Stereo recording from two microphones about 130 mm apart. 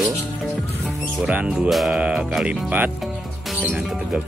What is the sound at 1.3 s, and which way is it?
Speech, 10° right (ahead or behind).